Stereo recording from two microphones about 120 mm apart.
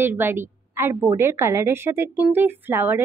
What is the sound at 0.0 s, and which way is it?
A woman's voice, 20° right (ahead or behind).